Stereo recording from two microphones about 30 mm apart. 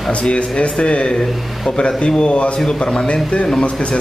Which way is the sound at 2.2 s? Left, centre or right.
Left.